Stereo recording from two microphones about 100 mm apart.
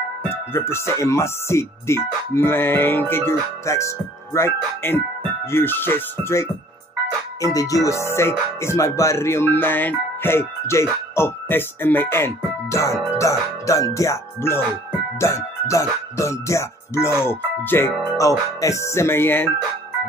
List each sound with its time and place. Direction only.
0.3 s speech: 25° left (ahead or behind)
7.4 s speech: 35° left (ahead or behind)